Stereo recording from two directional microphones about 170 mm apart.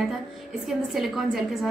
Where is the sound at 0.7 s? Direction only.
Centre (ahead or behind).